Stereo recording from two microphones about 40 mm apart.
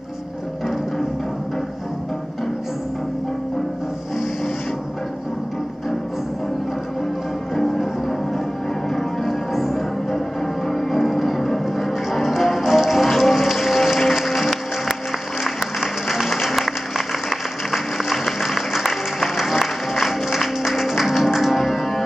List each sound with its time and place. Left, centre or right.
9.6 s music: centre
10.7 s music: centre